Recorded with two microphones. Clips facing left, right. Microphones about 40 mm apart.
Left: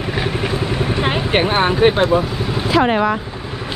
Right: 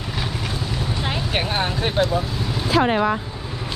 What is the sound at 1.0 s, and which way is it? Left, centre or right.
Speech, left.